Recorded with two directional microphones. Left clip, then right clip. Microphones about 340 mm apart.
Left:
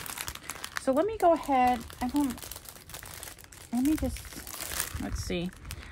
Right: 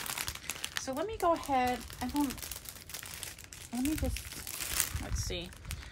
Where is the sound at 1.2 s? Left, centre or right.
Left.